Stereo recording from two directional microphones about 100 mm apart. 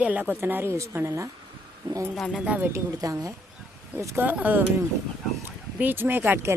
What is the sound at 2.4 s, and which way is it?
Speech, 15° right (ahead or behind).